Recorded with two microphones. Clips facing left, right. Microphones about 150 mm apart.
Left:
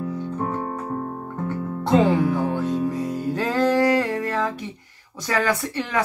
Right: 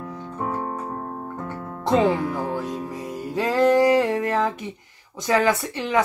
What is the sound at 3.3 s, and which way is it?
Music, 10° right (ahead or behind).